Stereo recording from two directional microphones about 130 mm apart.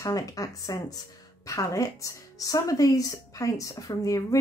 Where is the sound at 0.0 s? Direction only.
25° left (ahead or behind).